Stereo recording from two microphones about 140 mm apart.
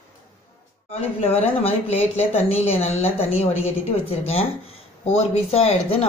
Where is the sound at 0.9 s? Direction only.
45° left (ahead or behind).